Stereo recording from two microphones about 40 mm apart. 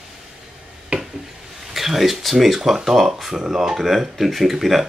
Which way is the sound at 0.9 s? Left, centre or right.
Right.